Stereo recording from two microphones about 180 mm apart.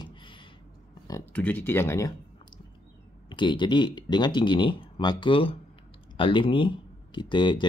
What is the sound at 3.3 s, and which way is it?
Speech, 25° left (ahead or behind).